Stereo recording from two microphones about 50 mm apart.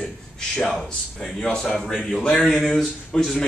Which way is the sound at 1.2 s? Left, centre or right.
Centre.